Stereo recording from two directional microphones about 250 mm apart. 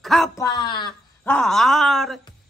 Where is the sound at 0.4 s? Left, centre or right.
Centre.